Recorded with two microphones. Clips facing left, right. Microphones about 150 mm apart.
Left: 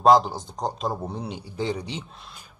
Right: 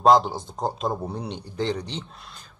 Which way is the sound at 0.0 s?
Centre (ahead or behind).